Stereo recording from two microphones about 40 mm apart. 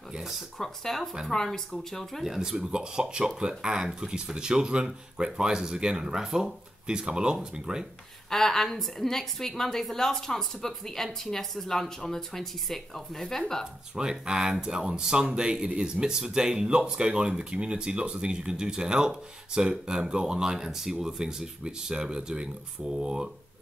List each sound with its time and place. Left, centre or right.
0.6 s a woman's voice: centre
2.2 s speech: centre
2.5 s speech: right
6.9 s speech: right
8.3 s a woman's voice: centre
13.9 s speech: centre